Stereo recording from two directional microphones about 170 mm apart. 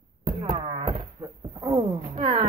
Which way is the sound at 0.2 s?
35° right (ahead or behind).